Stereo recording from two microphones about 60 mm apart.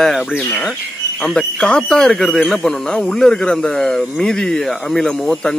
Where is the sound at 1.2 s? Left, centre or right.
Centre.